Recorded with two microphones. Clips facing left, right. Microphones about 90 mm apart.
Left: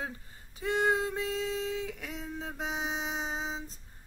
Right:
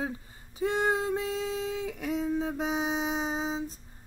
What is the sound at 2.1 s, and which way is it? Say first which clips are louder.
Female singing: right 9 dB; 10° right (ahead or behind).